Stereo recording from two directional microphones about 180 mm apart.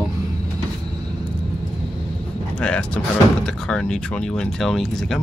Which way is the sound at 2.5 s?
5° left (ahead or behind).